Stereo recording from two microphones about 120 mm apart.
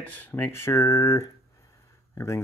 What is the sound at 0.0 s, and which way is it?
Speech, 15° left (ahead or behind).